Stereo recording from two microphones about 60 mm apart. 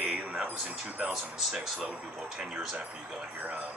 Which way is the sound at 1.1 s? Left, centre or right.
Centre.